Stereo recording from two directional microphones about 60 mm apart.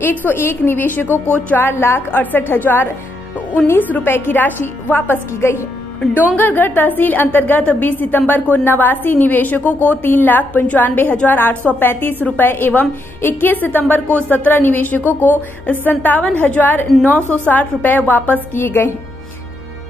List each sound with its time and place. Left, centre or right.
0.0 s a woman's voice: left
1.7 s a woman's voice: left